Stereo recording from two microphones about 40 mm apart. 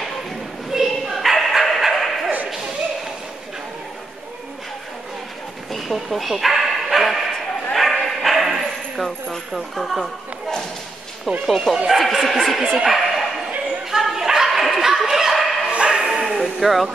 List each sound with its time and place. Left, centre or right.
0.7 s bow-wow: centre
5.7 s bow-wow: centre
8.9 s speech: centre
11.4 s speech: centre
13.8 s a sound: centre
15.7 s music: right
16.4 s speech: centre